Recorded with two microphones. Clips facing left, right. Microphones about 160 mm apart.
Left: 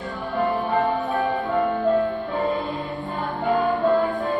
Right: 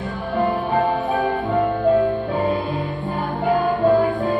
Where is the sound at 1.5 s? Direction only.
20° right (ahead or behind).